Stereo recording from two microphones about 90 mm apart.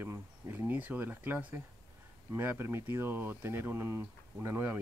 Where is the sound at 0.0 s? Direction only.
25° right (ahead or behind).